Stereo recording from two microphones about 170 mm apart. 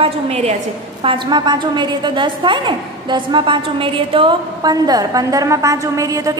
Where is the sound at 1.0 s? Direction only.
30° right (ahead or behind).